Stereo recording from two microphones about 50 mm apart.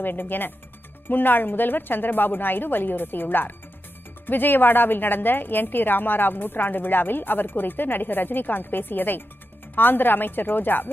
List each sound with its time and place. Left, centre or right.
0.0 s a woman's voice: left